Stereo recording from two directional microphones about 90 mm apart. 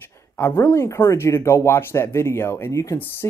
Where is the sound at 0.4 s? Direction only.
25° left (ahead or behind).